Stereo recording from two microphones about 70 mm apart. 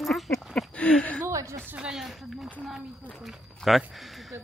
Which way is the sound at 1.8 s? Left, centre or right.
Centre.